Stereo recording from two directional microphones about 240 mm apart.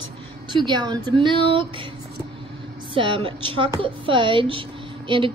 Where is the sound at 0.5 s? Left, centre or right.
Centre.